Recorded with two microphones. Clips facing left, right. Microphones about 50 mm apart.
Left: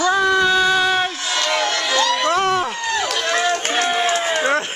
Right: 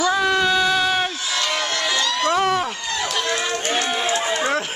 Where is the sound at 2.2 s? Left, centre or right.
Centre.